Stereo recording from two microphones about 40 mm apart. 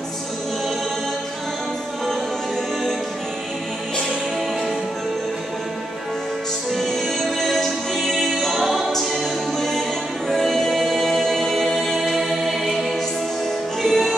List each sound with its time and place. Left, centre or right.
6.7 s music: centre
8.6 s choir: centre
9.1 s music: centre
13.8 s music: centre